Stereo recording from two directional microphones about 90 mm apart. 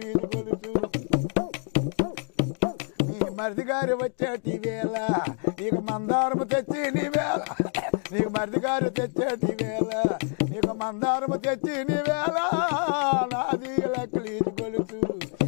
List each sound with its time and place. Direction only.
0.1 s music: 15° left (ahead or behind)